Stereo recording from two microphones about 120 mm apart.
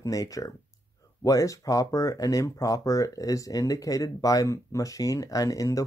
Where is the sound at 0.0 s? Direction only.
30° left (ahead or behind).